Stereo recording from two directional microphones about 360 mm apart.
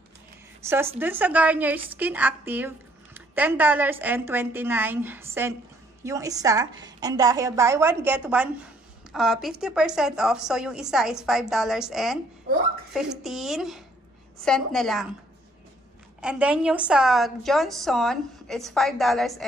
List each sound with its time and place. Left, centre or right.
0.7 s a woman's voice: centre
12.5 s speech: right
12.9 s a woman's voice: centre
16.2 s a woman's voice: centre